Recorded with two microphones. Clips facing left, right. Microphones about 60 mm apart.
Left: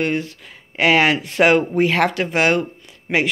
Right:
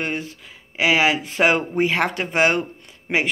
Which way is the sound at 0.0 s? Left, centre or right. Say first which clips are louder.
Left 5 dB; centre.